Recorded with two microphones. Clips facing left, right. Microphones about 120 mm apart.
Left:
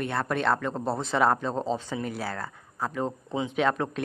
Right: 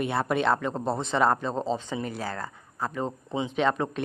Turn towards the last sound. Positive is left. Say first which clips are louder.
# even
turn(degrees=0)  # may be behind; listen again after turning